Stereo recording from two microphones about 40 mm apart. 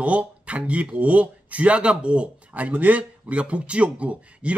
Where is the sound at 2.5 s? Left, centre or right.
Right.